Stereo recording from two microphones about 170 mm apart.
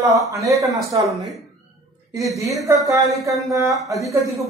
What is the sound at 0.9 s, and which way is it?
Speech, 30° right (ahead or behind).